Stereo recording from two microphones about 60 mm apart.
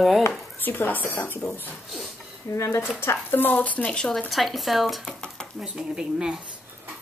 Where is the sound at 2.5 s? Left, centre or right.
Left.